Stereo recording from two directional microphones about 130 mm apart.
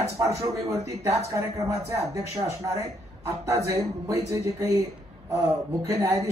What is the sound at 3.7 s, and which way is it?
Speech, 25° right (ahead or behind).